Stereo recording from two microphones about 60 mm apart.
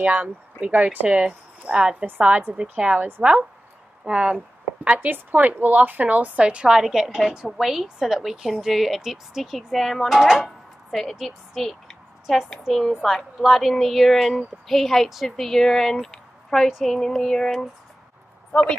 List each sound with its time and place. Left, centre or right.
0.0 s a woman's voice: right
4.9 s a woman's voice: right; by 18.8 s centre